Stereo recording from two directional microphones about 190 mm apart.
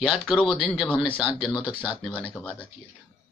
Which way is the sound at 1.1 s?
25° left (ahead or behind).